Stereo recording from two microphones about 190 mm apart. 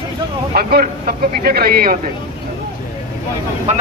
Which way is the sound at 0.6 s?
55° right (ahead or behind).